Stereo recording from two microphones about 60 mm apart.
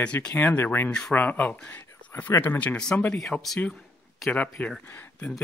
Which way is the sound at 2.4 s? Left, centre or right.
Left.